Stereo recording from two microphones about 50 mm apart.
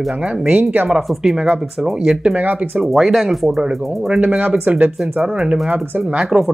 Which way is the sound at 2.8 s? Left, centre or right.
Centre.